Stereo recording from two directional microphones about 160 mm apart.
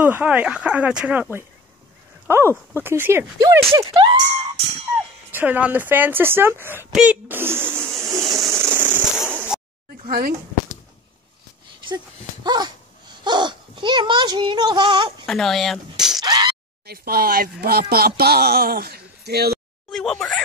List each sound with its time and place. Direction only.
0.0 s speech: 10° right (ahead or behind)
3.9 s speech: 30° right (ahead or behind)
5.3 s speech: 10° right (ahead or behind)
8.0 s a sound: 20° right (ahead or behind)
10.0 s speech: 65° right (ahead or behind)
12.4 s speech: 25° right (ahead or behind)
15.2 s speech: centre (ahead or behind)
16.2 s a sound: 25° right (ahead or behind)
16.8 s speech: 70° right (ahead or behind)
19.9 s a sound: 5° left (ahead or behind)